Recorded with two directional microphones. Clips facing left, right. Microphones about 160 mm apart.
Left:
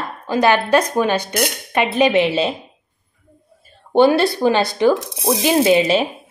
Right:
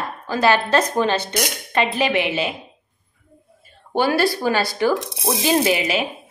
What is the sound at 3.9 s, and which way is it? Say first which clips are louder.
A woman's voice: left 5 dB; 25° left (ahead or behind).